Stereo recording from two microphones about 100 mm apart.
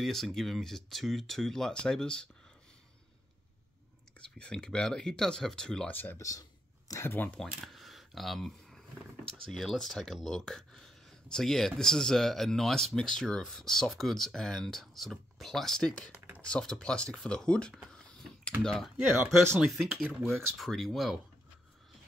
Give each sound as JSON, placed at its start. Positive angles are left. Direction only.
{"t": 0.0, "sound": "speech", "side_deg": 5}
{"t": 4.4, "sound": "speech", "side_deg": 10}
{"t": 5.9, "sound": "speech", "side_deg": 20}
{"t": 6.1, "sound": "speech", "side_deg": 35}
{"t": 7.2, "sound": "speech", "side_deg": 10}
{"t": 7.5, "sound": "camera", "side_deg": 0}
{"t": 9.3, "sound": "speech", "side_deg": 5}
{"t": 17.8, "sound": "a sound", "side_deg": 5}
{"t": 18.6, "sound": "speech", "side_deg": 5}